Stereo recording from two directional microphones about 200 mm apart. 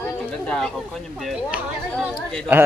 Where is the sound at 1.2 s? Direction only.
5° right (ahead or behind).